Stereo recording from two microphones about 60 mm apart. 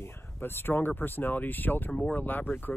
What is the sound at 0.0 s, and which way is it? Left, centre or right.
Speech, left.